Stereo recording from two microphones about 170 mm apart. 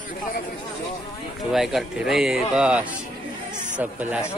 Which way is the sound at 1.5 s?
Centre (ahead or behind).